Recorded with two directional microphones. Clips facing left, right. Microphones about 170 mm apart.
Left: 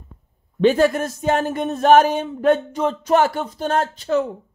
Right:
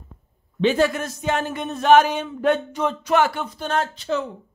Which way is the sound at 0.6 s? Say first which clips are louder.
Left 4 dB; 50° left (ahead or behind).